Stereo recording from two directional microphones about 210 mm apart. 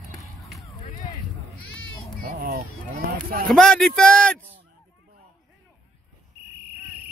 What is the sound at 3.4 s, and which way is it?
Speech, centre (ahead or behind).